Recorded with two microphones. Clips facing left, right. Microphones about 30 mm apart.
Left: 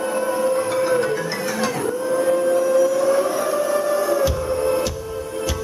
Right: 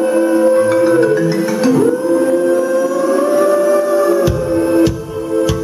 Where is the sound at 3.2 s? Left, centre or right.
Centre.